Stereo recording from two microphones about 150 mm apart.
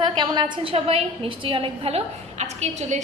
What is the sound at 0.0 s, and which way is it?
A woman's voice, 30° right (ahead or behind).